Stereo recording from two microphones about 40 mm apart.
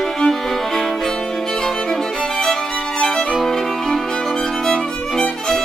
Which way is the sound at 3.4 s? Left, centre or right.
Centre.